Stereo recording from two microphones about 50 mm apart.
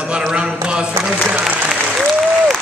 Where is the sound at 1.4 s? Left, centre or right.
Centre.